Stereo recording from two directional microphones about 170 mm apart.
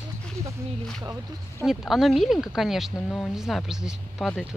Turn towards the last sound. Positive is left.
turn(degrees=0)  # may be behind; listen again after turning